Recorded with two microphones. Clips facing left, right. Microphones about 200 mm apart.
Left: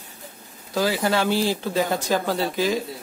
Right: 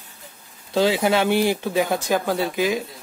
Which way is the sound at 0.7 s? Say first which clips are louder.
Right 3 dB; 25° right (ahead or behind).